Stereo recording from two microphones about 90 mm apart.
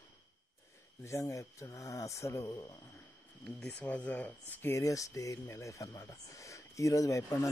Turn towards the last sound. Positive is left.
turn(degrees=35)  # may be behind; listen again after turning